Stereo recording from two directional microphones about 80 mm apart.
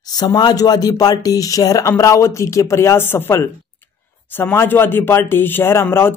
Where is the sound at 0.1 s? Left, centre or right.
Left.